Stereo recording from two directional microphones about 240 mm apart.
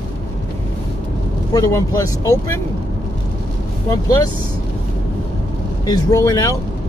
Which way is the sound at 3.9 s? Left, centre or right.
Centre.